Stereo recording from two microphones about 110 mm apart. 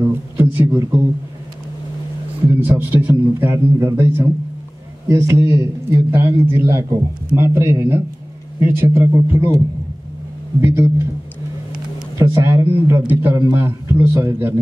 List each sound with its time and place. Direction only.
0.0 s a sound: 20° right (ahead or behind)
2.6 s a man's voice: 15° right (ahead or behind)
10.6 s a man's voice: 20° right (ahead or behind)
12.2 s a man's voice: 25° right (ahead or behind)